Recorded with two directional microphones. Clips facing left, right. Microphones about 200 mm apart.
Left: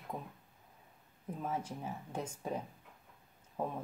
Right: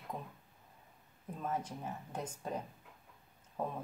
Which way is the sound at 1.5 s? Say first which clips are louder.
Right 1 dB; 10° left (ahead or behind).